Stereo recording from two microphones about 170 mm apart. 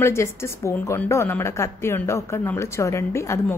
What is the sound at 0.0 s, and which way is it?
A woman's voice, 15° left (ahead or behind).